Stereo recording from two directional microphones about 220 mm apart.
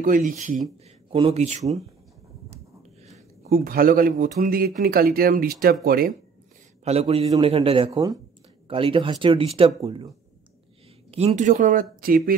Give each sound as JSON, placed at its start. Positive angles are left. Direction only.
{"t": 1.1, "sound": "a man's voice", "side_deg": -25}
{"t": 3.4, "sound": "speech", "side_deg": -40}
{"t": 6.8, "sound": "a man's voice", "side_deg": -30}